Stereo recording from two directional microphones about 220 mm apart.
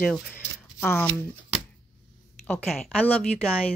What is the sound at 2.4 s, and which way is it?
Speech, 5° left (ahead or behind).